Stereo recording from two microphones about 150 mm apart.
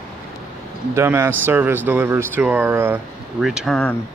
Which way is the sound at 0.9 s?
20° right (ahead or behind).